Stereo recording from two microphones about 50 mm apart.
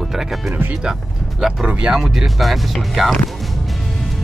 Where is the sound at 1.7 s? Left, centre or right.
Right.